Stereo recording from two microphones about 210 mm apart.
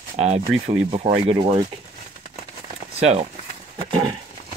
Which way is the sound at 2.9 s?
30° right (ahead or behind).